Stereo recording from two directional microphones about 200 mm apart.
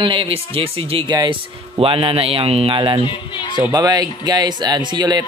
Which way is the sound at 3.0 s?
25° left (ahead or behind).